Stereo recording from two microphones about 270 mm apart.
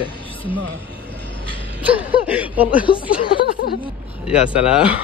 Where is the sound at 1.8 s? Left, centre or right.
Centre.